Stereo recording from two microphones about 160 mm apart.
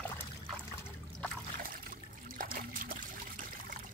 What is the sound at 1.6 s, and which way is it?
Trickle, 60° right (ahead or behind).